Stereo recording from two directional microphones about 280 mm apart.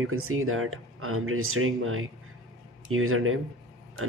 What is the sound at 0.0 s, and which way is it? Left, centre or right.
Speech, right.